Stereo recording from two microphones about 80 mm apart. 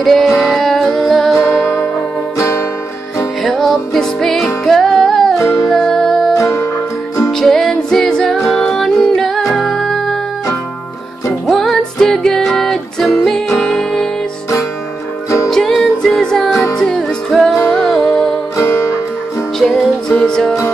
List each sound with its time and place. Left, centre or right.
0.0 s music: centre
1.4 s music: left
3.4 s music: centre
6.3 s music: left
7.2 s music: centre
11.4 s music: centre
15.2 s music: left
15.5 s music: centre
18.6 s music: left
19.6 s music: centre